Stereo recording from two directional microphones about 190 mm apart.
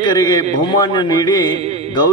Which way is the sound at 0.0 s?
20° left (ahead or behind).